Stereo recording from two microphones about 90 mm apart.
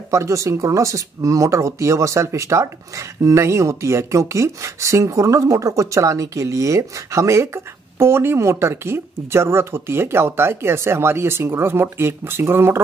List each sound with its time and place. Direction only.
0.1 s speech: 35° right (ahead or behind)